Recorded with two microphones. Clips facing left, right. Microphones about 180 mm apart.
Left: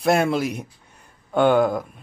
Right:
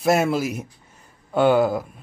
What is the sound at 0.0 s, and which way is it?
A man's voice, 5° right (ahead or behind).